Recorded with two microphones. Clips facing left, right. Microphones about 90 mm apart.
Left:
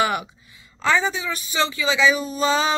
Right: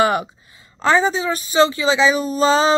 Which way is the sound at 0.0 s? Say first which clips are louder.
Right 5 dB; 35° right (ahead or behind).